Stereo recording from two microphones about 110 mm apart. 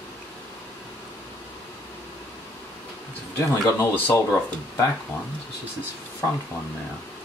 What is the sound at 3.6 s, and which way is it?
Speech, 25° left (ahead or behind).